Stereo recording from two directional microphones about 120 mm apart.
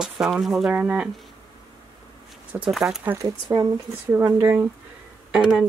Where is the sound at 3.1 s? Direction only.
35° right (ahead or behind).